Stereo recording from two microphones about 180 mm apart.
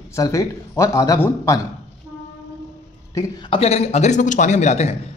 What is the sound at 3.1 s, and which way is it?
Speech, 20° left (ahead or behind).